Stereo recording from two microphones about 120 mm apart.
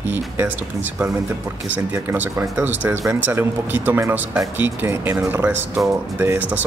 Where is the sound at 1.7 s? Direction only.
15° right (ahead or behind).